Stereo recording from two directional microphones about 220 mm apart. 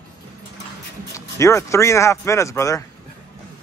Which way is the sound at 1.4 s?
15° left (ahead or behind).